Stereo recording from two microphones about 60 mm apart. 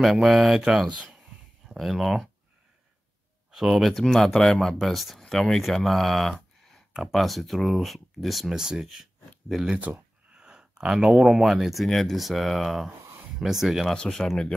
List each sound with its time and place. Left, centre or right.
0.0 s speech: centre
1.7 s speech: centre
3.5 s speech: centre
9.8 s speech: right
10.3 s speech: centre
13.9 s speech: centre